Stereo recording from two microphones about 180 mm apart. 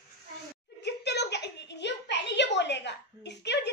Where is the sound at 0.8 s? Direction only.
70° left (ahead or behind).